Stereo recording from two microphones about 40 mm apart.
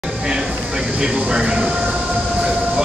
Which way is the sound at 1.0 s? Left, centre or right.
Centre.